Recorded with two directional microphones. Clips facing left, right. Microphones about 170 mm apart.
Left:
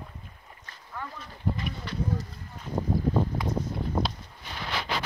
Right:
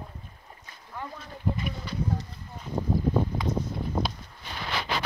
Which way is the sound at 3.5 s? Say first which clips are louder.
Right 1 dB; 35° left (ahead or behind).